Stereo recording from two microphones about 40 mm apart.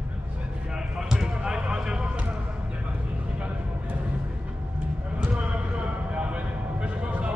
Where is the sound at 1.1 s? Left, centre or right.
Centre.